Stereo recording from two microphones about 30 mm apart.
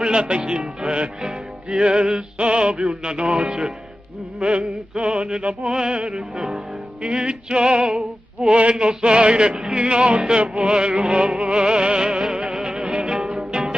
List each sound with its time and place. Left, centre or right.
0.1 s music: right
5.4 s music: right
5.7 s music: right
11.5 s music: right